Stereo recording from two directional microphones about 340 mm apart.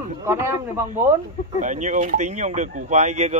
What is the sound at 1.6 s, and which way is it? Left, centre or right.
Speech, right.